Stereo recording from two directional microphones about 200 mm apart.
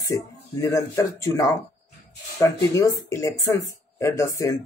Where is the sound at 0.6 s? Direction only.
15° left (ahead or behind).